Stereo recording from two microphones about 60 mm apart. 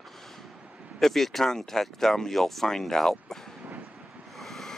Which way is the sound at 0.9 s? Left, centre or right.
Centre.